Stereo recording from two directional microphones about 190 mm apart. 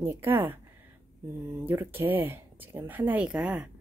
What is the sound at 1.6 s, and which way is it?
Speech, 10° right (ahead or behind).